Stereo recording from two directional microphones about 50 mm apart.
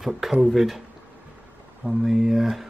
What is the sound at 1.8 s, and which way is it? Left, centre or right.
Speech, centre.